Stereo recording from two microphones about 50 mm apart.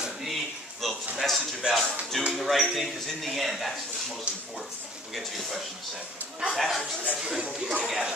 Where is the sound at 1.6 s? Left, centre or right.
Centre.